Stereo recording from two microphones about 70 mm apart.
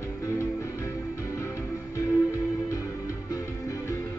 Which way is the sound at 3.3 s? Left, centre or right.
Left.